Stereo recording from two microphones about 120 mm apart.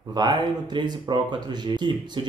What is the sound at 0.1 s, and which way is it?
Speech, 35° right (ahead or behind).